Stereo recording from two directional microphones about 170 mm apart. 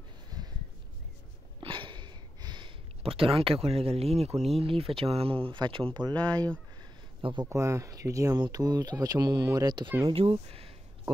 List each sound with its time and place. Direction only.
0.3 s a sound: 20° right (ahead or behind)
1.6 s a sound: 30° right (ahead or behind)
4.6 s speech: 35° right (ahead or behind)
6.1 s speech: 10° left (ahead or behind)
7.2 s speech: 30° right (ahead or behind)
7.4 s speech: 15° right (ahead or behind); by 10.7 s 35° right (ahead or behind)